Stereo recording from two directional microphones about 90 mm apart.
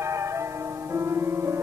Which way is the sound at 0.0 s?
30° right (ahead or behind).